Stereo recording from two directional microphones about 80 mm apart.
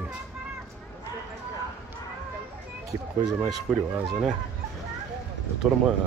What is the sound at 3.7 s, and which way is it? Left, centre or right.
Speech, centre.